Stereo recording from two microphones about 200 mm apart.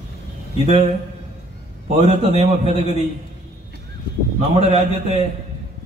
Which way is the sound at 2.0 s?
35° right (ahead or behind).